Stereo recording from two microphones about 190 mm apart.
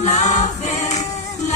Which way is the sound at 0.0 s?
40° left (ahead or behind).